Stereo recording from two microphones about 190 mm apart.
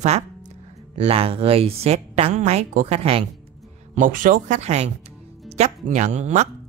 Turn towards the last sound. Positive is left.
turn(degrees=-40)  # may be behind; listen again after turning